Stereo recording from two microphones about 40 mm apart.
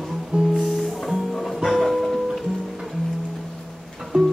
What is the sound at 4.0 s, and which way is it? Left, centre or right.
Music, centre.